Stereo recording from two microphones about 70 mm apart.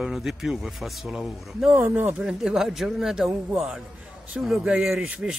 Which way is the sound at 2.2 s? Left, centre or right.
Centre.